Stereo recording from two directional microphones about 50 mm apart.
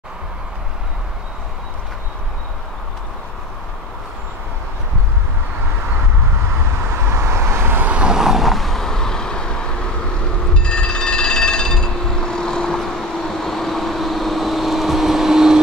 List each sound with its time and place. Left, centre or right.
7.2 s vehicle: right
7.6 s vehicle: right
7.9 s vehicle: centre
10.5 s telephone bell ringing: centre